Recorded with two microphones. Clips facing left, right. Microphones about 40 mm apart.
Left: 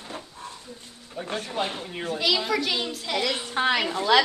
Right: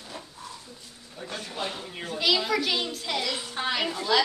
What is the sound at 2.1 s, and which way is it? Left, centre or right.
A child's voice, centre.